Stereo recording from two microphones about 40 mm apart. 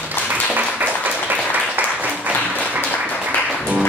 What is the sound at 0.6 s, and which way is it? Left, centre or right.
Applause, right.